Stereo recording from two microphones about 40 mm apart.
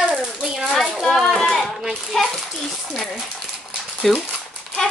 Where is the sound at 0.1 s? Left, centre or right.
Centre.